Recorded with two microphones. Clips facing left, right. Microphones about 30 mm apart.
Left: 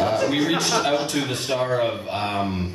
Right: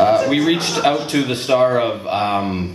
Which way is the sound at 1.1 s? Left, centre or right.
Right.